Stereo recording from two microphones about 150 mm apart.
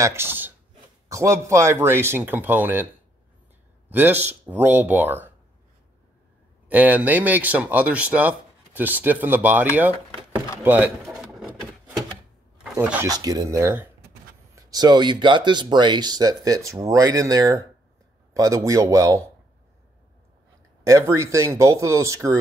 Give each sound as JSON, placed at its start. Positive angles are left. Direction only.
{"t": 0.0, "sound": "speech", "side_deg": -15}
{"t": 3.9, "sound": "speech", "side_deg": -15}
{"t": 6.7, "sound": "speech", "side_deg": -10}
{"t": 9.8, "sound": "a sound", "side_deg": -10}
{"t": 10.6, "sound": "speech", "side_deg": -10}
{"t": 11.1, "sound": "drawer open or close", "side_deg": 0}
{"t": 12.7, "sound": "speech", "side_deg": -15}
{"t": 13.1, "sound": "speech", "side_deg": -25}
{"t": 20.8, "sound": "speech", "side_deg": -20}